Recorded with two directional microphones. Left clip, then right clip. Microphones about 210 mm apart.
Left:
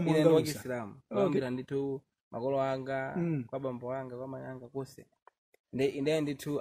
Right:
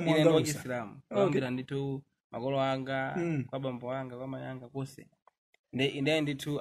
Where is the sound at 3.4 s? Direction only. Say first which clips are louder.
Even; 45° left (ahead or behind).